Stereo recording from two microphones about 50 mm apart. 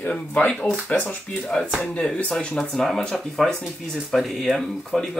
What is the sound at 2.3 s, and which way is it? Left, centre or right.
Speech, centre.